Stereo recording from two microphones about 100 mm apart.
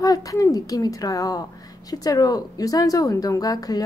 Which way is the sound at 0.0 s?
35° left (ahead or behind).